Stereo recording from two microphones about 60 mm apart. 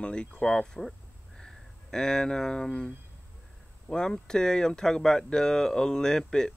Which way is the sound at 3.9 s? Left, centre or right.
Centre.